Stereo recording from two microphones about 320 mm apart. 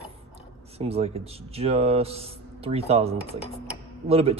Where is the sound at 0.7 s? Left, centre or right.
Centre.